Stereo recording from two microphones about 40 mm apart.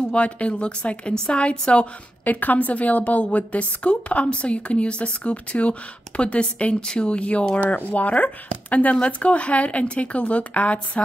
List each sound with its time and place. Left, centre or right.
0.1 s a woman's voice: left
2.2 s a woman's voice: left
7.5 s speech: left